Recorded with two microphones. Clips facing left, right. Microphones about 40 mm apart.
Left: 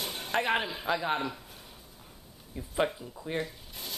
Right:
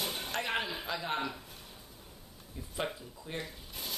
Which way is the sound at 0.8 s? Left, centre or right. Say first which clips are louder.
Left 6 dB; left.